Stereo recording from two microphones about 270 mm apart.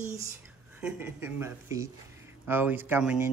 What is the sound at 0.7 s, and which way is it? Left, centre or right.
Speech, centre.